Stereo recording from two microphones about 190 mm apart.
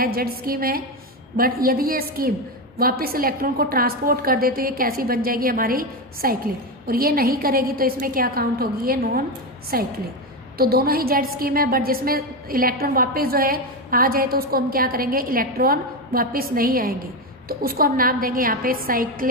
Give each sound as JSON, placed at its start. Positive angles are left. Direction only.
{"t": 0.0, "sound": "a woman's voice", "side_deg": -50}